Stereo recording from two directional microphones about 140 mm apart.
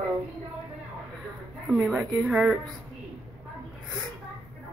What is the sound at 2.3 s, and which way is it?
Speech, 5° right (ahead or behind).